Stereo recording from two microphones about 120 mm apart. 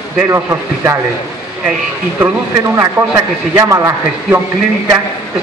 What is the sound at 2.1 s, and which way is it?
A man's voice, 15° right (ahead or behind).